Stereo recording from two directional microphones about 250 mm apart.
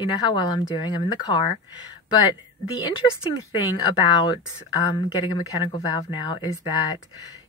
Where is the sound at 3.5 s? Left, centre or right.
Centre.